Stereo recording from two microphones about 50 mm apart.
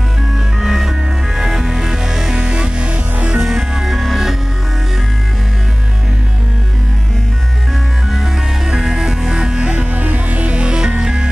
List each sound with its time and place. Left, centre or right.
0.6 s music: centre
2.4 s music: centre
3.4 s music: centre
8.1 s music: centre
9.8 s music: right; by 11.2 s centre